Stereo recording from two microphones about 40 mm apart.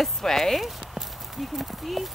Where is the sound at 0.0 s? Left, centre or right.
Centre.